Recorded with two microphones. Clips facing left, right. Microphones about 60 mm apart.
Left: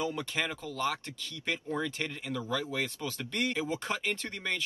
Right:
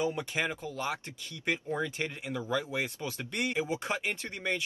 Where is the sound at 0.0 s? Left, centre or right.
Centre.